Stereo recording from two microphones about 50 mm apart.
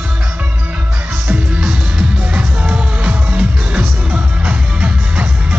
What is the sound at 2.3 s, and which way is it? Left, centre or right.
Music, right.